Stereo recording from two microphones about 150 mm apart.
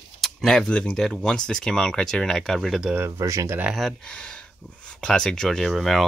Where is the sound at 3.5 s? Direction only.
5° right (ahead or behind).